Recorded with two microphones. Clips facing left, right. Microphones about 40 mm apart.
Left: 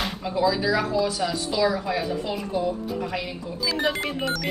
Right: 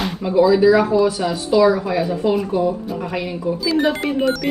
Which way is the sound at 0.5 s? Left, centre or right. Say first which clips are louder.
Right 10 dB; right.